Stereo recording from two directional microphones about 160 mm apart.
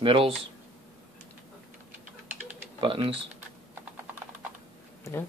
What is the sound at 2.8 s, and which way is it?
Speech, 30° right (ahead or behind).